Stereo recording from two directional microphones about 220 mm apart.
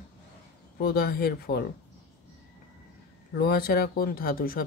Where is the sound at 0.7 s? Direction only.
45° left (ahead or behind).